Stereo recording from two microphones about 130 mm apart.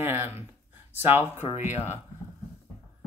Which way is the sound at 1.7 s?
60° left (ahead or behind).